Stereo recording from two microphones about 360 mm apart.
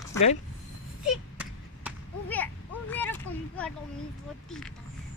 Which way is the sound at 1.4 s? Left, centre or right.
Centre.